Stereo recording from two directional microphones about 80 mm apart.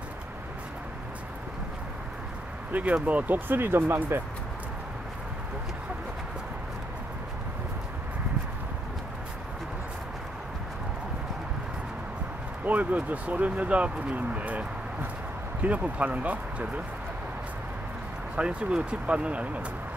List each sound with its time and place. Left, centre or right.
2.7 s speech: centre
12.6 s speech: centre
18.3 s speech: centre